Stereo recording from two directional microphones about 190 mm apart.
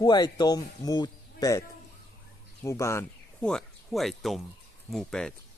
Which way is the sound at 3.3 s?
5° left (ahead or behind).